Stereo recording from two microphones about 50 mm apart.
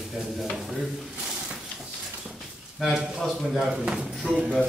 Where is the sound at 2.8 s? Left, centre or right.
Centre.